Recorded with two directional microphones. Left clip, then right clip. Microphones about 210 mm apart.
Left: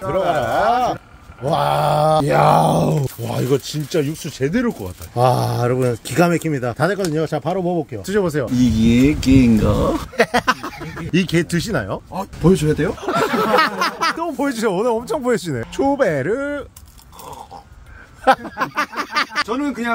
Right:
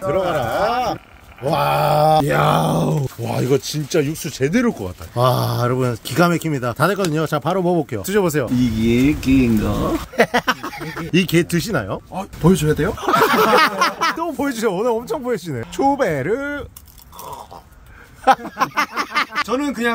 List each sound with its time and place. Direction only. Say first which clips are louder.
1.4 s groan: even; 5° right (ahead or behind)
3.3 s speech: right 1 dB; 5° right (ahead or behind)
7.6 s speech: right 2 dB; 35° right (ahead or behind)
8.0 s speech: left 2 dB; 10° right (ahead or behind)
8.5 s speech: left 2 dB; 40° left (ahead or behind)
10.1 s speech: right 1 dB; 5° left (ahead or behind)
12.4 s speech: left 1 dB; 15° right (ahead or behind)
12.9 s a sound: right 4 dB; 5° right (ahead or behind)
15.2 s speech: left 3 dB; 20° left (ahead or behind)
15.7 s speech: even; centre (ahead or behind)
18.2 s a sound: even; 5° left (ahead or behind)
19.5 s speech: right 2 dB; 35° right (ahead or behind)